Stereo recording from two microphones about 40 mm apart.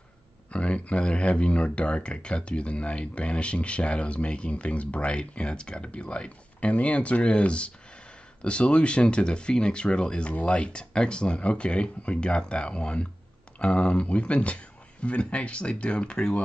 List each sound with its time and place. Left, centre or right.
0.5 s speech: left